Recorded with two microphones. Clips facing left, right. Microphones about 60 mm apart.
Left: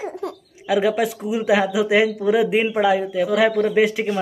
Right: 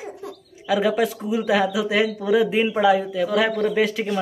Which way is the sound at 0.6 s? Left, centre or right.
Centre.